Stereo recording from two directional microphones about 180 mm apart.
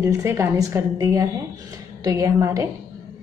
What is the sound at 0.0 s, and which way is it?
A woman's voice, 15° right (ahead or behind).